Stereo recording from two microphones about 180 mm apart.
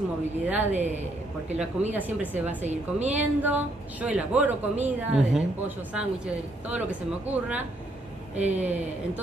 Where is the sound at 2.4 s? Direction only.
40° right (ahead or behind).